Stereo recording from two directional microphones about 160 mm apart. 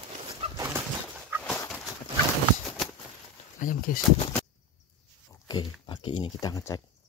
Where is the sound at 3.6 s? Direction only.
60° left (ahead or behind).